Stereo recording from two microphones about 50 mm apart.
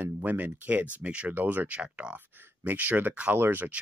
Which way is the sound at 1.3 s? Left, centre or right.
Right.